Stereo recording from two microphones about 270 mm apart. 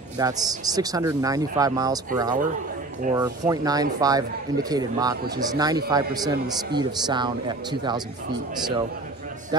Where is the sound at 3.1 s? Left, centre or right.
Centre.